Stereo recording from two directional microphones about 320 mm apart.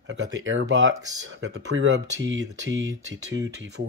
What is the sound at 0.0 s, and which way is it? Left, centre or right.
Speech, right.